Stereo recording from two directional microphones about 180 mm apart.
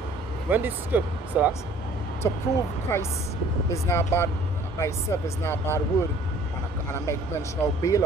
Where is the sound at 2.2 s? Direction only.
15° left (ahead or behind).